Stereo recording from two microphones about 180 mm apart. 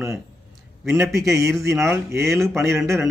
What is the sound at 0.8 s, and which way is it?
A man's voice, 15° right (ahead or behind).